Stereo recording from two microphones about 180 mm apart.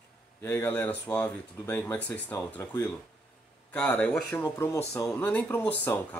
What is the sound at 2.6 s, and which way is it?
Speech, 20° left (ahead or behind).